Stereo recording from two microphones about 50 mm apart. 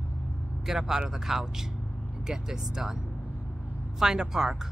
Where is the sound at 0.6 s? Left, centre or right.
Centre.